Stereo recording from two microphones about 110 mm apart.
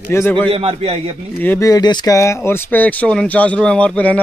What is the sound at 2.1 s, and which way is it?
Speech, 25° left (ahead or behind).